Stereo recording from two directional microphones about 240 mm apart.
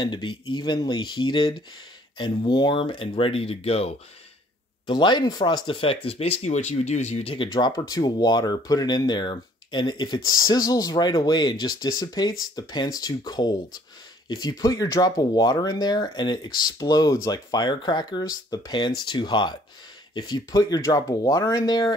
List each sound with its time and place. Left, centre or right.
0.0 s speech: centre